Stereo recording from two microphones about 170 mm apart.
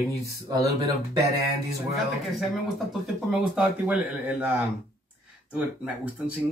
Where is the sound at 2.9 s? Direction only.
Centre (ahead or behind).